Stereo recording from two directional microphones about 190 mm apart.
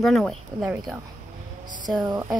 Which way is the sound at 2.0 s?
20° right (ahead or behind).